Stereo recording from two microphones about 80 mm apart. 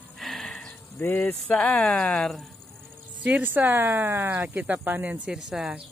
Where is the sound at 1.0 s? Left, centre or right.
Left; by 2.5 s centre.